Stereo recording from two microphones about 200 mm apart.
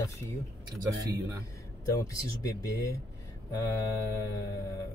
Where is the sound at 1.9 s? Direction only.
15° left (ahead or behind).